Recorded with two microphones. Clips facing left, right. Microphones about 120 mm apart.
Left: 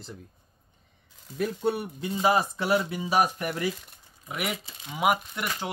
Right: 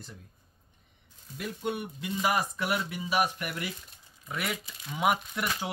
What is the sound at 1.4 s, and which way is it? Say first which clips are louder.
Speech: left 6 dB; 35° left (ahead or behind).